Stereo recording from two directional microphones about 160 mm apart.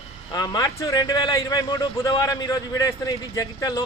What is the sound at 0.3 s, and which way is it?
A man's voice, 20° left (ahead or behind).